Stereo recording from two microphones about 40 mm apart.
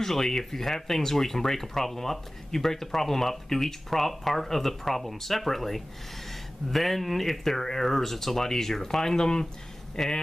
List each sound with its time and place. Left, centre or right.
0.0 s speech: centre